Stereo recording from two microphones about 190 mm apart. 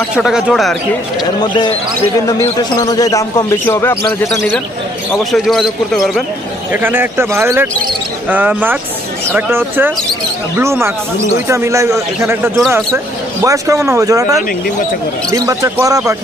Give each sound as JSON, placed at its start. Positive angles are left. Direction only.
{"t": 0.1, "sound": "speech", "side_deg": -5}
{"t": 1.4, "sound": "speech", "side_deg": 25}
{"t": 2.8, "sound": "speech", "side_deg": 20}
{"t": 5.1, "sound": "speech", "side_deg": 0}
{"t": 6.7, "sound": "speech", "side_deg": -10}